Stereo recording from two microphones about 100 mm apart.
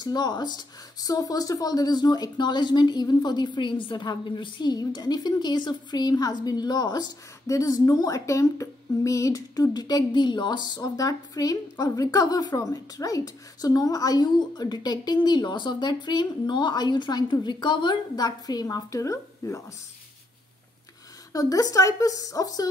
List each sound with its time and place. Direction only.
0.0 s speech: 45° left (ahead or behind)
21.3 s a woman's voice: 35° left (ahead or behind)